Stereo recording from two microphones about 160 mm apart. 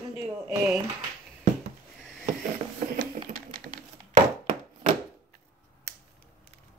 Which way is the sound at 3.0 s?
50° right (ahead or behind).